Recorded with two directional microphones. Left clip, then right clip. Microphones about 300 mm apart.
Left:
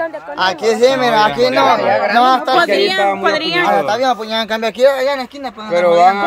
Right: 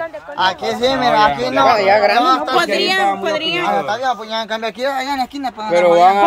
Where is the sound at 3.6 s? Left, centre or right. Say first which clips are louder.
Left 6 dB; left.